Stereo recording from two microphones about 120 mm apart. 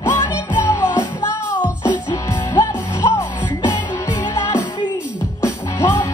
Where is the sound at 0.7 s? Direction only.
25° left (ahead or behind).